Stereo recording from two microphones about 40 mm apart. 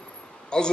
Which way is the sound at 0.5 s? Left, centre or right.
Left.